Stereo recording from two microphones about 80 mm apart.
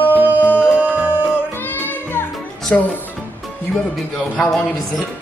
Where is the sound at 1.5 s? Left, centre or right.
Left.